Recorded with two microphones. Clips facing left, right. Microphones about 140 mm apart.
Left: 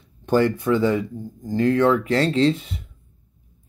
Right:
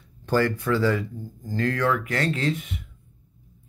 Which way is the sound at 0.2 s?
20° left (ahead or behind).